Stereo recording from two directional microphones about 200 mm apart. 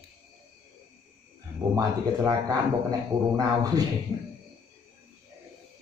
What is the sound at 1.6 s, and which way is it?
Speech, 20° right (ahead or behind).